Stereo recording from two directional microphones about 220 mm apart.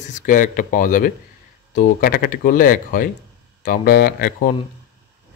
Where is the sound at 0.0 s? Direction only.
35° left (ahead or behind).